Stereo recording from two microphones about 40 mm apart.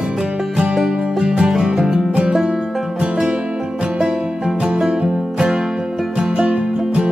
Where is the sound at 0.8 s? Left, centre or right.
Centre.